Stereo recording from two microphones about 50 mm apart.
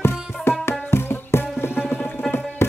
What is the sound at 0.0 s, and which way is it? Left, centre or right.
Music, left.